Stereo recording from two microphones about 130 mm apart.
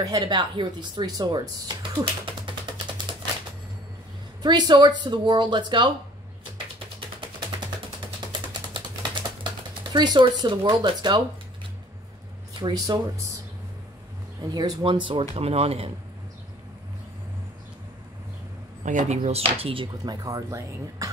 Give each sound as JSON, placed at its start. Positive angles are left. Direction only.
{"t": 0.0, "sound": "speech", "side_deg": -30}
{"t": 4.4, "sound": "speech", "side_deg": -35}
{"t": 7.2, "sound": "a sound", "side_deg": -35}
{"t": 8.3, "sound": "typing", "side_deg": -35}
{"t": 9.9, "sound": "speech", "side_deg": -35}
{"t": 12.5, "sound": "speech", "side_deg": -35}
{"t": 14.5, "sound": "speech", "side_deg": -35}
{"t": 18.9, "sound": "speech", "side_deg": -65}
{"t": 20.2, "sound": "speech", "side_deg": -25}